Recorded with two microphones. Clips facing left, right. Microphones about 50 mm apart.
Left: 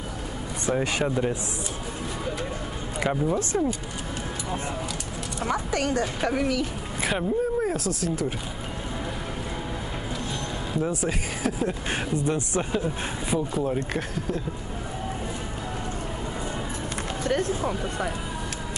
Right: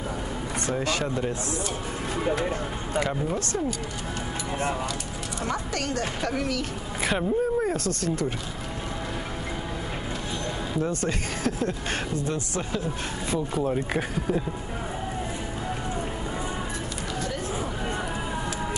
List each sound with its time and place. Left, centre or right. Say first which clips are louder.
0.7 s speech: left 3 dB; centre
3.0 s speech: left 3 dB; centre
5.7 s speech: left 3 dB; centre
7.0 s speech: even; centre
10.8 s speech: left 1 dB; centre
12.3 s speech: left 3 dB; left
13.6 s speech: right 1 dB; centre